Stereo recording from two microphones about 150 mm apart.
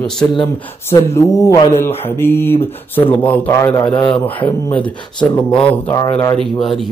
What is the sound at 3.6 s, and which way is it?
Speech, 25° left (ahead or behind).